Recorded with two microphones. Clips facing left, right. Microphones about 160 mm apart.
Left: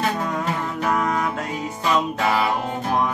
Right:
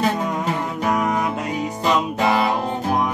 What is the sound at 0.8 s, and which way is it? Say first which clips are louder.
Music: right 1 dB; 15° right (ahead or behind).